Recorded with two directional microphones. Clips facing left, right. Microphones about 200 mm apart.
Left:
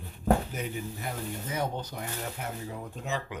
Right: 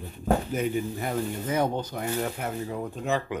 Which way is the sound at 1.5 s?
60° right (ahead or behind).